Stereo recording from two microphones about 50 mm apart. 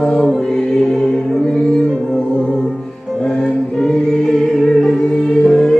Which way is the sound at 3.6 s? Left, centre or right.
Centre.